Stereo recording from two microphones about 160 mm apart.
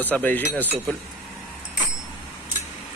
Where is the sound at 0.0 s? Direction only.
10° left (ahead or behind).